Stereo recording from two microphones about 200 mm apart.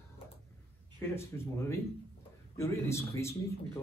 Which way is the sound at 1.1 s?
10° left (ahead or behind).